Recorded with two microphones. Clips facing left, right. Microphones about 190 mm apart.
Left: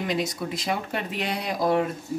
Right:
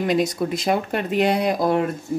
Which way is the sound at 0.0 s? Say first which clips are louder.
Right 7 dB; 55° right (ahead or behind).